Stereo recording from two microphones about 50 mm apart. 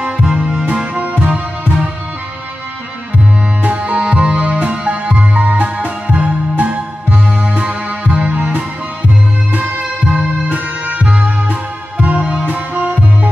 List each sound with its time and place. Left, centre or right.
0.0 s music: centre
0.9 s music: right
3.6 s music: right
10.0 s music: centre
10.5 s music: right
12.0 s music: right